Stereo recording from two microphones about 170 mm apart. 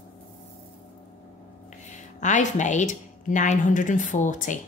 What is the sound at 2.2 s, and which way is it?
A woman's voice, 45° left (ahead or behind).